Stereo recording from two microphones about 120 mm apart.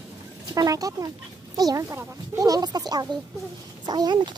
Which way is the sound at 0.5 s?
30° right (ahead or behind).